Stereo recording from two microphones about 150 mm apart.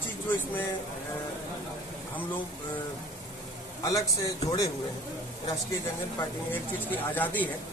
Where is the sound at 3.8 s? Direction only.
25° left (ahead or behind).